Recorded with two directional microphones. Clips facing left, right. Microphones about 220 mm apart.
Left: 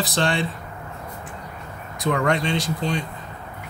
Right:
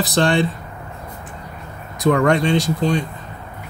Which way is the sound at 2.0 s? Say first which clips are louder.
Right 6 dB; 45° right (ahead or behind).